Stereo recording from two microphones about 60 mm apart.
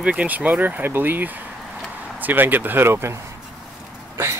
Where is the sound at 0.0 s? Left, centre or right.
Right.